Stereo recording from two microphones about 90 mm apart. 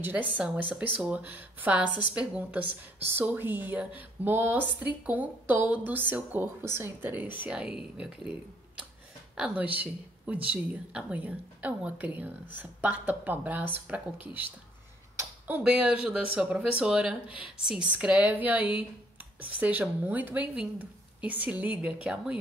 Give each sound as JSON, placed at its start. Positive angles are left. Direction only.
{"t": 0.0, "sound": "a woman's voice", "side_deg": -20}
{"t": 9.3, "sound": "a woman's voice", "side_deg": -15}
{"t": 15.4, "sound": "speech", "side_deg": -20}